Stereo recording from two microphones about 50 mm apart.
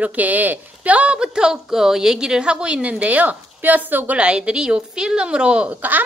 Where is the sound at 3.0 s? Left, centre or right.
Right.